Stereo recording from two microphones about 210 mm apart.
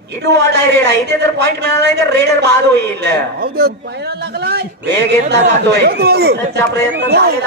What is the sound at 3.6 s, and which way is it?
A man's voice, 50° right (ahead or behind).